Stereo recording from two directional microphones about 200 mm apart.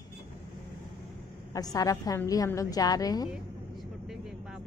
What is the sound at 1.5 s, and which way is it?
A woman's voice, 15° left (ahead or behind).